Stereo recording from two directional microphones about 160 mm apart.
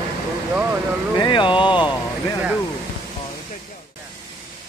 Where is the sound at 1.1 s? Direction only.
30° left (ahead or behind).